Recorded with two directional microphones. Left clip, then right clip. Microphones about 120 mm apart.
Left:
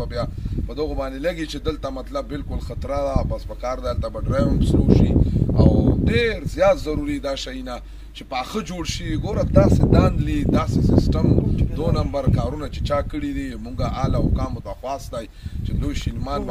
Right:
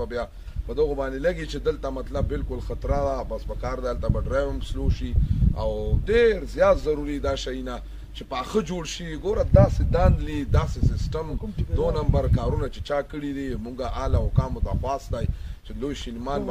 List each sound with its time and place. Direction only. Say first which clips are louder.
0.0 s speech: left 2 dB; 30° right (ahead or behind)